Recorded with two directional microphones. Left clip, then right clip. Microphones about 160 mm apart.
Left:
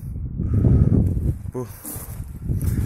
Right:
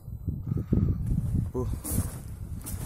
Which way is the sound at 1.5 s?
Centre (ahead or behind).